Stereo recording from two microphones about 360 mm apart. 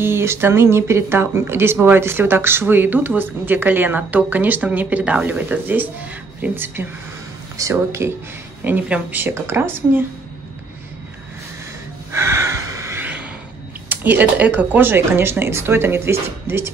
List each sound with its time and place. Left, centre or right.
0.0 s speech: centre
12.1 s snort: centre
13.8 s speech: centre